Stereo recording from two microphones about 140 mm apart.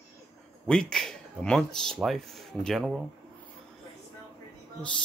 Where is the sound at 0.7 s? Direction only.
5° left (ahead or behind).